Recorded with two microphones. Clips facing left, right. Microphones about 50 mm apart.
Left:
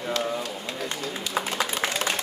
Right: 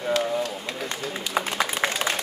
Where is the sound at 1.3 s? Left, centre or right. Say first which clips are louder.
Right 2 dB; right.